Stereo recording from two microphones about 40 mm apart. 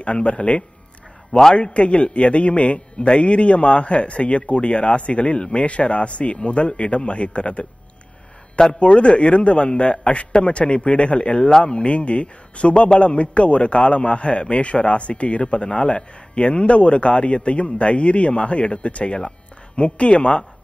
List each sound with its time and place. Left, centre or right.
0.0 s a man's voice: left
8.7 s a man's voice: left